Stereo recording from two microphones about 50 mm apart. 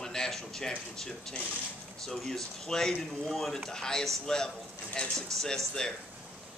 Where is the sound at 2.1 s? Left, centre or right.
Centre.